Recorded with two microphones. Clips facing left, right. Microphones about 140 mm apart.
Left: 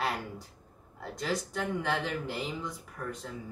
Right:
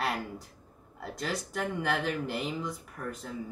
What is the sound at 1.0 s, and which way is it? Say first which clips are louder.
Speech: left 1 dB; centre (ahead or behind).